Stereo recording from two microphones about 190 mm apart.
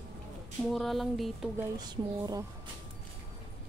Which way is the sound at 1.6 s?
20° right (ahead or behind).